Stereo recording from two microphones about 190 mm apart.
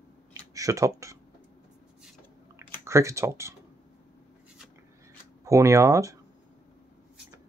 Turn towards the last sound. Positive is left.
turn(degrees=-15)  # may be behind; listen again after turning